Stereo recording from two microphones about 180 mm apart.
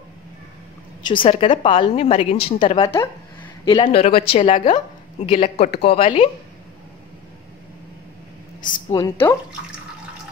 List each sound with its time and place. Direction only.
1.0 s a woman's voice: 30° left (ahead or behind)
5.7 s speech: 65° left (ahead or behind)
5.9 s speech: 30° left (ahead or behind)
9.2 s speech: 10° left (ahead or behind)